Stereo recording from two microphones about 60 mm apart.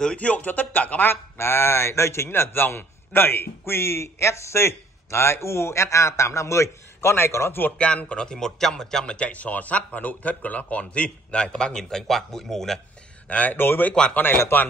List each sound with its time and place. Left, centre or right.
0.0 s a man's voice: centre
1.4 s a man's voice: left
7.7 s speech: centre
13.3 s a man's voice: left